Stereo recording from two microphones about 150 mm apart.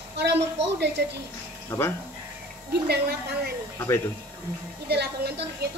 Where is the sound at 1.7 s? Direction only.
15° left (ahead or behind).